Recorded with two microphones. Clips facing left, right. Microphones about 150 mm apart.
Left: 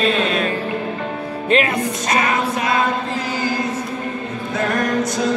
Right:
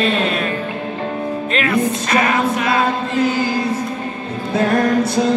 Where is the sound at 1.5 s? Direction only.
30° left (ahead or behind).